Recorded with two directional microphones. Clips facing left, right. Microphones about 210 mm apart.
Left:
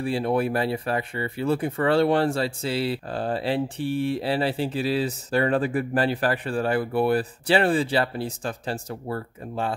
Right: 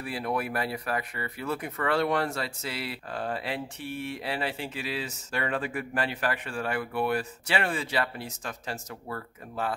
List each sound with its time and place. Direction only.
0.0 s speech: 30° left (ahead or behind)